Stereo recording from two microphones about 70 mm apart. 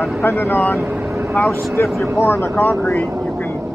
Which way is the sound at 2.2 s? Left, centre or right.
Left.